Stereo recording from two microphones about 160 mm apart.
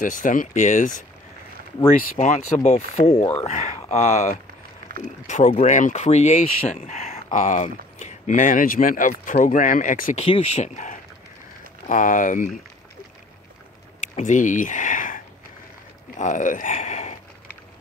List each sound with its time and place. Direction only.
0.0 s speech: 55° left (ahead or behind)
10.2 s speech: 40° left (ahead or behind); by 12.4 s 55° left (ahead or behind)
14.0 s speech: 50° left (ahead or behind)